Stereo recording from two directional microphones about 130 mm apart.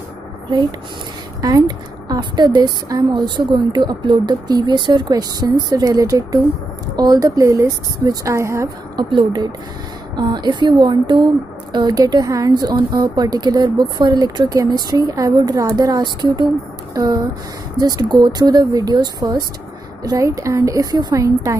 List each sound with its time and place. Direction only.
0.5 s speech: 35° right (ahead or behind)
8.9 s speech: 35° right (ahead or behind)